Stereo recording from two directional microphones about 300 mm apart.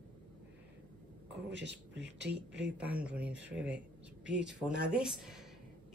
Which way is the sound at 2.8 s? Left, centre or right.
Centre.